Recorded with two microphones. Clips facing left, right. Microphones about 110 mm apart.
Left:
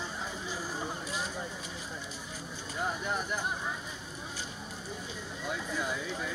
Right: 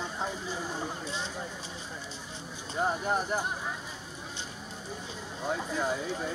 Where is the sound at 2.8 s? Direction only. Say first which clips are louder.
Right 5 dB; 40° right (ahead or behind).